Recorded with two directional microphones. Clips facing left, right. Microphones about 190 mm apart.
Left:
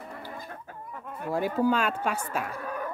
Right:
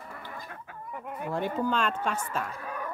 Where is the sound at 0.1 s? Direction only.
20° left (ahead or behind).